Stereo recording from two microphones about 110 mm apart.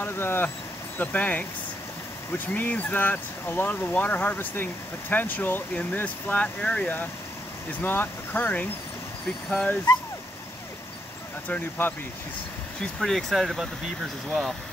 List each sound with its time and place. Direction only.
0.0 s speech: 20° left (ahead or behind)
11.4 s speech: 15° left (ahead or behind)
13.0 s speech: centre (ahead or behind)